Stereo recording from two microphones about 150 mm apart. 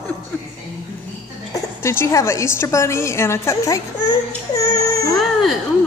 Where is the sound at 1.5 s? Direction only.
15° left (ahead or behind).